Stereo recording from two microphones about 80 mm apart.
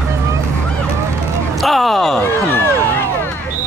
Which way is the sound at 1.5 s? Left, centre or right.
Centre.